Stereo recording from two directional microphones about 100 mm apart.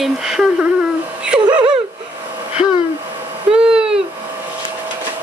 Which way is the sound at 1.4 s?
45° right (ahead or behind).